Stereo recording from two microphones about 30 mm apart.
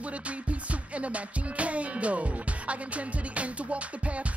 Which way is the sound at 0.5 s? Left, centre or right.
Right.